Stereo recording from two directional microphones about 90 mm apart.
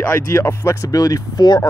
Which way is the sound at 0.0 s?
30° left (ahead or behind).